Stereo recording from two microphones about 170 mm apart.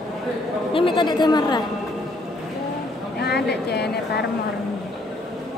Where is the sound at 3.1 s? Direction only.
75° left (ahead or behind).